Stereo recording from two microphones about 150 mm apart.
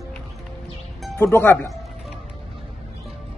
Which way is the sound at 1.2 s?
15° left (ahead or behind).